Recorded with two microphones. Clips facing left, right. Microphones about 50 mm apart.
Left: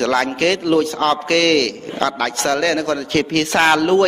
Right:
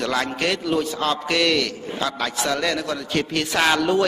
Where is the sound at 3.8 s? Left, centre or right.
Left.